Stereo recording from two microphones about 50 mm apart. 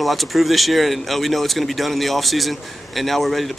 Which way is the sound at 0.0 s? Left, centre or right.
Centre.